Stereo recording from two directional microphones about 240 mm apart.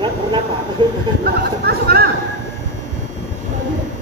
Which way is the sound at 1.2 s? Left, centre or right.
Right.